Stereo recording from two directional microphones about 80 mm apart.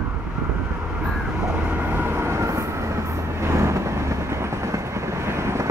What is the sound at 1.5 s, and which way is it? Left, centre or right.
Train, right.